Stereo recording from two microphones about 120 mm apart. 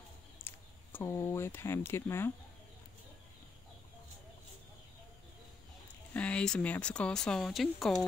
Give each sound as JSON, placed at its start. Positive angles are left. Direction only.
{"t": 0.5, "sound": "clicking", "side_deg": 20}
{"t": 0.9, "sound": "speech", "side_deg": 20}
{"t": 6.1, "sound": "speech", "side_deg": 10}